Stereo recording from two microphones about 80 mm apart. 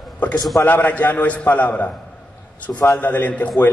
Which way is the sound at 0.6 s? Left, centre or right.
Left.